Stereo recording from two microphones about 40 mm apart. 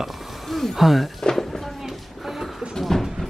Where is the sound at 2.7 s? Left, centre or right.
Centre.